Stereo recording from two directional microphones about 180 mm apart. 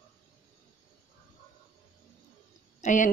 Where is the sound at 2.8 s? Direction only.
45° left (ahead or behind).